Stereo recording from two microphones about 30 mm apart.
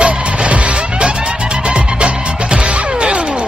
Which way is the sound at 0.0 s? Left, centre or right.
Right.